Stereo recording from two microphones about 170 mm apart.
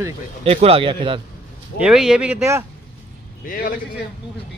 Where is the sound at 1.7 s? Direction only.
5° right (ahead or behind).